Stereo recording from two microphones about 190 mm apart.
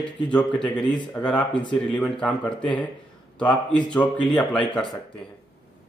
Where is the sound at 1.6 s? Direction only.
25° left (ahead or behind).